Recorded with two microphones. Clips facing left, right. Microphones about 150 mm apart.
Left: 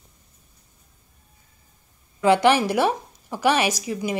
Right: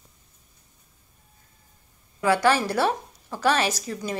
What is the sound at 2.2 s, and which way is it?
A woman's voice, 25° left (ahead or behind).